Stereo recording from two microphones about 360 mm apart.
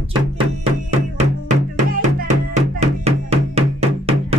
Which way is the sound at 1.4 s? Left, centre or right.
Centre.